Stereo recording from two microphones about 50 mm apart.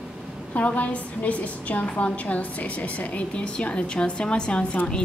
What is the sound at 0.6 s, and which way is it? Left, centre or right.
A woman's voice, left.